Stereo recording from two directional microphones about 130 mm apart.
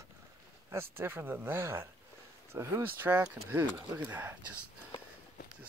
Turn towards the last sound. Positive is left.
turn(degrees=-15)  # may be behind; listen again after turning